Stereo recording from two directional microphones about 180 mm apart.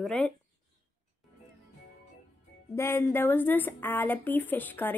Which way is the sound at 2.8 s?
15° left (ahead or behind).